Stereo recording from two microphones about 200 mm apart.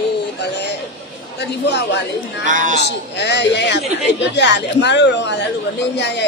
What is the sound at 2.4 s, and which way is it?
Speech, 40° right (ahead or behind).